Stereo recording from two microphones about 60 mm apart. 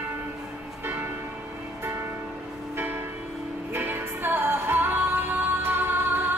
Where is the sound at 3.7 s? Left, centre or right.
Right.